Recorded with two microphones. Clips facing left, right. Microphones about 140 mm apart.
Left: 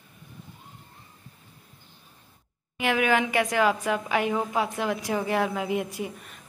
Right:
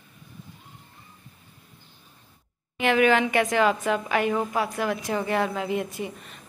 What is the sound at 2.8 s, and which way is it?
A woman's voice, 10° left (ahead or behind).